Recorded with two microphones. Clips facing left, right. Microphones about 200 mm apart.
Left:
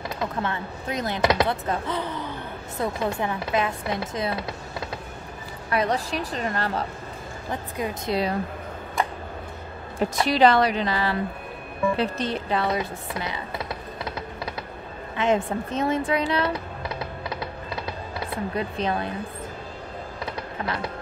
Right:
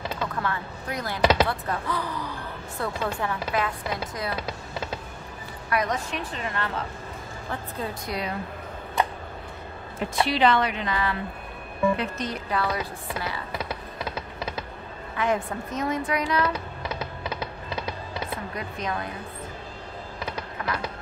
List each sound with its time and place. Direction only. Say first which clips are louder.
0.2 s speech: left 3 dB; 20° left (ahead or behind)
5.7 s a woman's voice: left 3 dB; 30° left (ahead or behind)
8.1 s a woman's voice: left 8 dB; 30° left (ahead or behind)
9.9 s a woman's voice: left 3 dB; 45° left (ahead or behind); by 13.6 s 20° left (ahead or behind)
15.1 s speech: left 3 dB; 25° left (ahead or behind)
18.5 s speech: left 5 dB; 30° left (ahead or behind)